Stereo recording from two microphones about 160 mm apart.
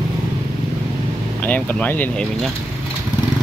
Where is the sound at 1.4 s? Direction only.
10° left (ahead or behind).